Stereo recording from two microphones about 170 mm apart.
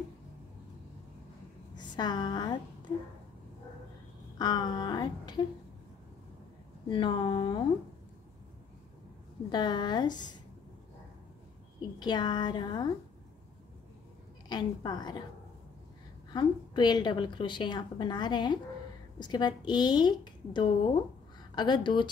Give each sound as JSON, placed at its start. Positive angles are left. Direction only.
{"t": 1.8, "sound": "a woman's voice", "side_deg": 25}
{"t": 4.4, "sound": "speech", "side_deg": 25}
{"t": 6.9, "sound": "a woman's voice", "side_deg": 30}
{"t": 9.5, "sound": "a woman's voice", "side_deg": 25}
{"t": 12.0, "sound": "a woman's voice", "side_deg": 25}
{"t": 14.5, "sound": "a woman's voice", "side_deg": 25}
{"t": 16.3, "sound": "a woman's voice", "side_deg": 25}